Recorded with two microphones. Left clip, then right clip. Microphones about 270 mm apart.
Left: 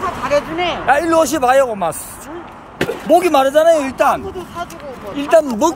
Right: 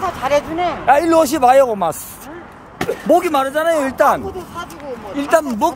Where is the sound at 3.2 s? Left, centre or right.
Centre; by 5.4 s right.